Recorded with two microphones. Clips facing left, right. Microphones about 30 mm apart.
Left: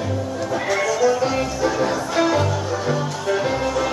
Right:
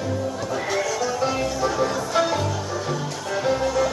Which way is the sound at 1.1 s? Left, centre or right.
Centre.